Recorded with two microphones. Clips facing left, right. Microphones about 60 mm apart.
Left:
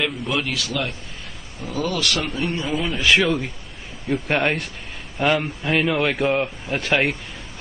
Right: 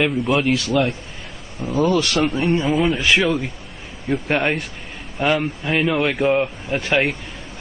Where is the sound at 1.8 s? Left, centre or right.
Centre.